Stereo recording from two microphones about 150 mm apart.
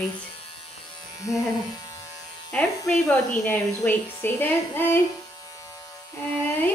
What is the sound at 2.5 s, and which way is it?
A woman's voice, 5° left (ahead or behind).